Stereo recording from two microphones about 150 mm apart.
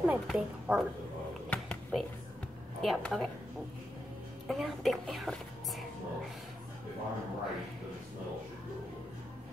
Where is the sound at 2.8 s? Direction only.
Centre (ahead or behind).